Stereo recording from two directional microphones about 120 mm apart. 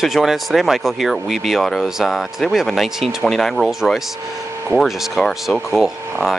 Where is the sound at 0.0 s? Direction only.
Centre (ahead or behind).